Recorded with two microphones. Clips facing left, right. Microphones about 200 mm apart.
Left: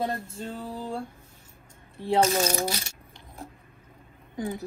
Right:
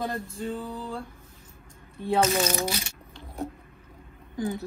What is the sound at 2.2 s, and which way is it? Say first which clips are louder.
Speech: left 1 dB; 30° left (ahead or behind).